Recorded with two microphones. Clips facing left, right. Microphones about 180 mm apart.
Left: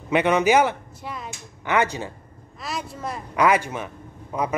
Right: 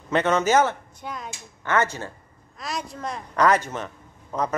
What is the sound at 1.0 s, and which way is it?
Speech, centre (ahead or behind).